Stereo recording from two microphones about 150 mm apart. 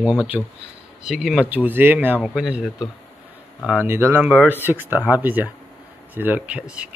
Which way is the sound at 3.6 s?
15° right (ahead or behind).